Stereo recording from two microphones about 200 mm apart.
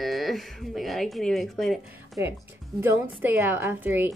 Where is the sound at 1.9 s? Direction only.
15° right (ahead or behind).